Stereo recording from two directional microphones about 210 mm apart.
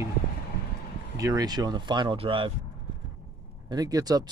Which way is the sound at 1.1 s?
15° right (ahead or behind).